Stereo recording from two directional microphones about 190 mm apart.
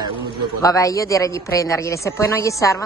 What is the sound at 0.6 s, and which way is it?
Speech, 15° left (ahead or behind).